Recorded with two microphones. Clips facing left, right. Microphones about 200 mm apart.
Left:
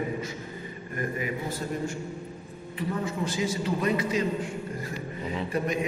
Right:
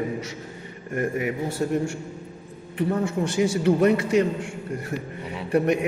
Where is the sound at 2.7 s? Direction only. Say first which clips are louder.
Right 7 dB; 65° right (ahead or behind).